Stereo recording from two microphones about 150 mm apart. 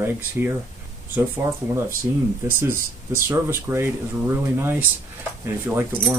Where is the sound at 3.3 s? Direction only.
15° right (ahead or behind).